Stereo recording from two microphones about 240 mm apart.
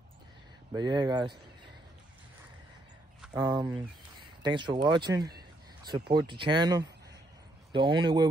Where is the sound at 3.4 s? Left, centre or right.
Centre.